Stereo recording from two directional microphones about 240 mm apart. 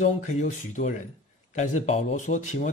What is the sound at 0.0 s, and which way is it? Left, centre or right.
A man's voice, left.